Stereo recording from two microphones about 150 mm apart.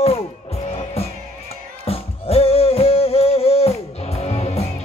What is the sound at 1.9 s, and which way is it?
Music, 40° left (ahead or behind).